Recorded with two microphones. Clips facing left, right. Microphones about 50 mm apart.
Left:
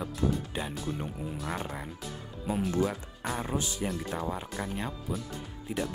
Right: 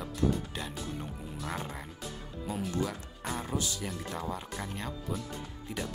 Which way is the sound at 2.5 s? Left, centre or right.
Centre.